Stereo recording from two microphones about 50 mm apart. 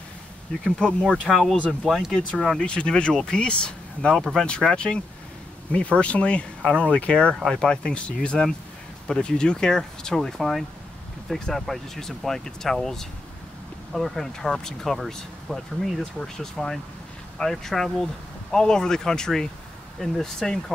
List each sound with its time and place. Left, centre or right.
1.3 s speech: centre
2.1 s speech: centre
4.2 s speech: centre
4.5 s speech: centre
13.9 s speech: centre
16.0 s speech: centre
16.5 s speech: centre